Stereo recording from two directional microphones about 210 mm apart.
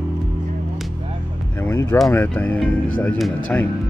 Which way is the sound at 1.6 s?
10° left (ahead or behind).